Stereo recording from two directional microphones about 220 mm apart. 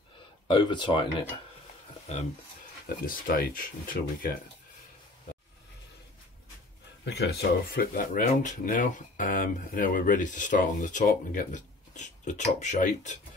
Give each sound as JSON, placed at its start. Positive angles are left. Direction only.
{"t": 0.5, "sound": "speech", "side_deg": 20}
{"t": 2.1, "sound": "speech", "side_deg": 30}
{"t": 7.1, "sound": "speech", "side_deg": 50}